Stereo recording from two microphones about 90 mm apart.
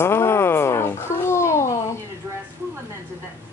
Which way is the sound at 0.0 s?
25° left (ahead or behind).